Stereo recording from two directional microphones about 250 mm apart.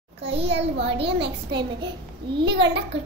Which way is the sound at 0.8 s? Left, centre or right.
Right.